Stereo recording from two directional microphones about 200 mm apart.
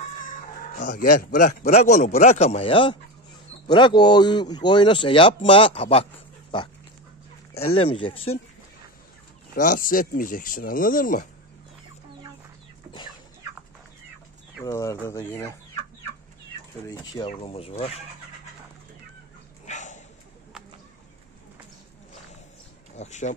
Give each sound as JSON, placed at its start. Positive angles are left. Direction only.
{"t": 0.7, "sound": "a man's voice", "side_deg": 40}
{"t": 7.8, "sound": "speech", "side_deg": 25}
{"t": 9.6, "sound": "speech", "side_deg": 40}
{"t": 14.6, "sound": "speech", "side_deg": 15}
{"t": 17.3, "sound": "speech", "side_deg": 30}
{"t": 19.6, "sound": "dog", "side_deg": 35}
{"t": 22.9, "sound": "speech", "side_deg": 35}